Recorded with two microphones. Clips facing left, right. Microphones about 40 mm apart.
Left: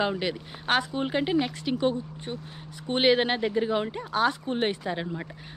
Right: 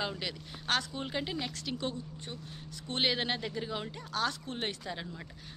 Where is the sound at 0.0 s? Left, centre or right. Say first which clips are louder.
Left 9 dB; left.